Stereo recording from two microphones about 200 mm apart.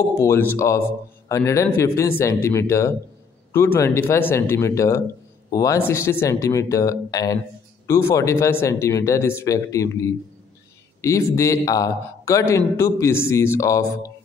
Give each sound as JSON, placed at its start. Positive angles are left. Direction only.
{"t": 0.1, "sound": "a man's voice", "side_deg": 15}